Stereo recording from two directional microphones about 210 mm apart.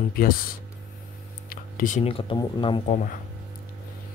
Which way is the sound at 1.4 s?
40° left (ahead or behind).